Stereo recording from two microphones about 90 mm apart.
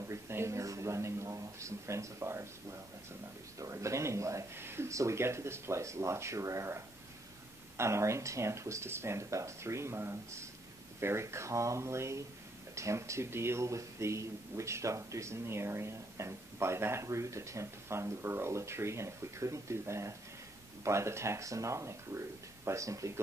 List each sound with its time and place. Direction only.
0.0 s speech: 30° right (ahead or behind)
3.5 s speech: 35° right (ahead or behind)